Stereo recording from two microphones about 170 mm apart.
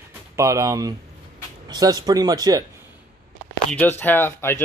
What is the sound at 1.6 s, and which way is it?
A man's voice, 20° right (ahead or behind).